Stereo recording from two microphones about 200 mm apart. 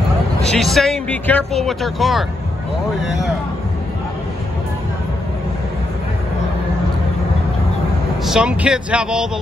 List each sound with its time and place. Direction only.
0.5 s speech: centre (ahead or behind)
8.3 s speech: 5° right (ahead or behind)